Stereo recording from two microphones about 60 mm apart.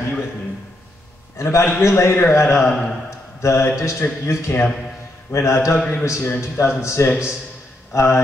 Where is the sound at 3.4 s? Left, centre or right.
Left.